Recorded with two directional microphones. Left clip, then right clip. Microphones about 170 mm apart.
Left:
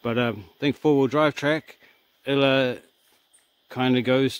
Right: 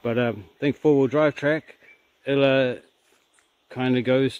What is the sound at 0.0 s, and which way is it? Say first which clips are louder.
Speech: right 1 dB; 5° left (ahead or behind).